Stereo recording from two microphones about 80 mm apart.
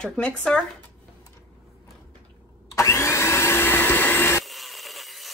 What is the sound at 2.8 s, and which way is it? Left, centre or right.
Vacuum cleaner, left.